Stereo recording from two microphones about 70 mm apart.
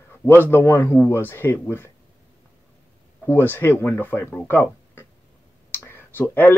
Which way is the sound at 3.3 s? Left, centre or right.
Left.